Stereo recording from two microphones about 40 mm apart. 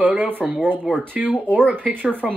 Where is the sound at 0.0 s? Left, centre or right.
Right.